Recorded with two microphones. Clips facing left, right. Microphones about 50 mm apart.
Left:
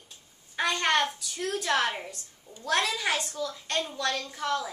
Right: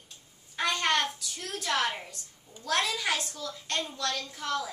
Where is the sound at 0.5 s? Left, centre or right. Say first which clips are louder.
Left 2 dB; centre.